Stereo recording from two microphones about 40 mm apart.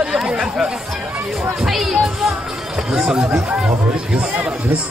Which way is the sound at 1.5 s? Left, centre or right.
Centre.